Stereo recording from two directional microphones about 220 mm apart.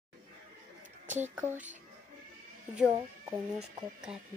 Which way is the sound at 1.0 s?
35° right (ahead or behind).